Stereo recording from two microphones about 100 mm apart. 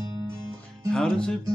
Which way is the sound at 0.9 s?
5° left (ahead or behind).